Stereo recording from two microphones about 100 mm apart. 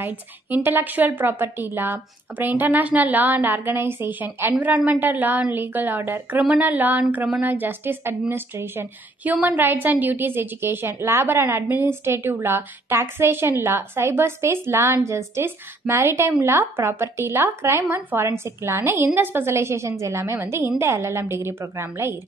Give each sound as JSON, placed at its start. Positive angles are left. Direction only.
{"t": 0.0, "sound": "a woman's voice", "side_deg": -20}